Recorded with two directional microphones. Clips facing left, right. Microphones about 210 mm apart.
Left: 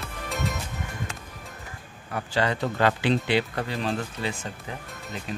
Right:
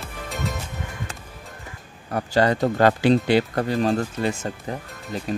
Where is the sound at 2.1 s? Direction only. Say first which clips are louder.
Right 6 dB; 40° right (ahead or behind).